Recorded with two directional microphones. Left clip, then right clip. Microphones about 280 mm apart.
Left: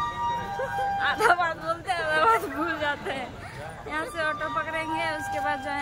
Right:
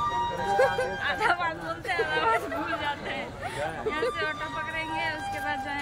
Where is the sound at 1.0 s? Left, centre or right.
Centre.